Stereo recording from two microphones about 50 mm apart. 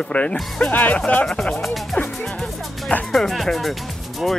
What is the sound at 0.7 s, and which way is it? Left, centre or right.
Speech, left.